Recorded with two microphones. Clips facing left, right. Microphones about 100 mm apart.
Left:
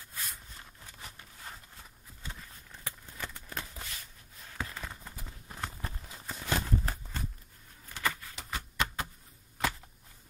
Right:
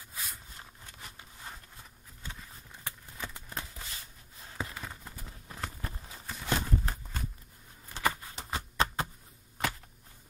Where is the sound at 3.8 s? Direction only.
25° right (ahead or behind).